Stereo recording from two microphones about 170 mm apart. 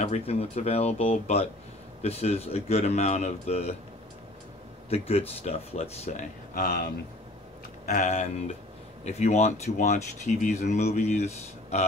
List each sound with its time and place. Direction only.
0.0 s speech: 40° left (ahead or behind)
4.8 s speech: 35° left (ahead or behind)
6.5 s speech: 60° left (ahead or behind)
7.8 s speech: 45° left (ahead or behind)